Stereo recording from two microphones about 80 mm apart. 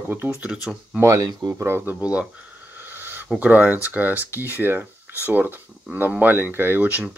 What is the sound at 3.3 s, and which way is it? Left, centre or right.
Speech, centre.